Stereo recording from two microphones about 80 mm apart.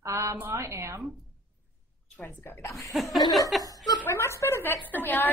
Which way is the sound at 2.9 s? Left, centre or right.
Centre.